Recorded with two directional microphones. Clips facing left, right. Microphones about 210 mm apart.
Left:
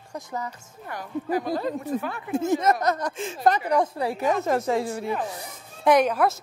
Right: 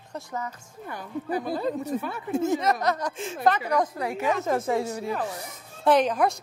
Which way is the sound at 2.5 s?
45° left (ahead or behind).